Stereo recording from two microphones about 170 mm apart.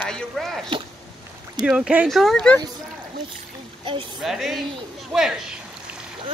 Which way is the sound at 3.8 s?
30° right (ahead or behind).